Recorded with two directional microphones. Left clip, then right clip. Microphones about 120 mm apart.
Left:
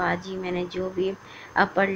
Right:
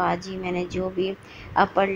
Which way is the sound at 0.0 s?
10° right (ahead or behind).